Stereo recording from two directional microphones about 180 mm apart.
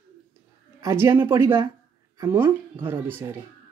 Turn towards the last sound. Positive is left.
turn(degrees=-15)  # may be behind; listen again after turning